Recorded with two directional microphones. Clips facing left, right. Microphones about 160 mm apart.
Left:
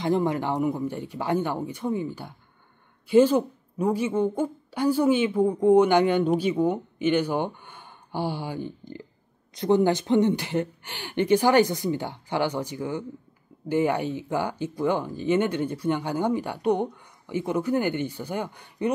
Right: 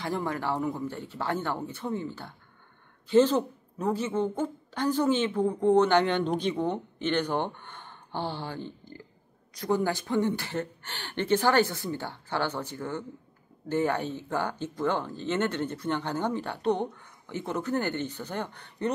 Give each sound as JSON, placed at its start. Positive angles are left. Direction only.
{"t": 0.0, "sound": "a woman's voice", "side_deg": 20}